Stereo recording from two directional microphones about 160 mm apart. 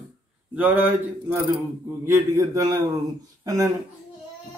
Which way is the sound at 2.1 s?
20° right (ahead or behind).